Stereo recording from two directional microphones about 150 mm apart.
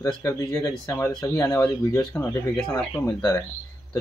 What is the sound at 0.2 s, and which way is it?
Speech, 20° left (ahead or behind).